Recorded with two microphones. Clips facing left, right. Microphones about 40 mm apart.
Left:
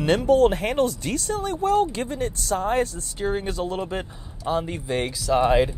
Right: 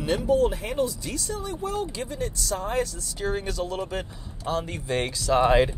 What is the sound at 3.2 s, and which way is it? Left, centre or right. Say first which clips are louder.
Speech: left 3 dB; left.